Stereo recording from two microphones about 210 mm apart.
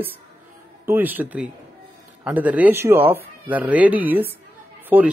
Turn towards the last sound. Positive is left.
turn(degrees=-10)  # may be behind; listen again after turning